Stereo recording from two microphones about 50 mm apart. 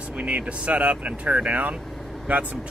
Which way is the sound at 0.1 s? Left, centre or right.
Right.